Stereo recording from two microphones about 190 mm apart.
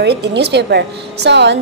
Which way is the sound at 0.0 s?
60° right (ahead or behind).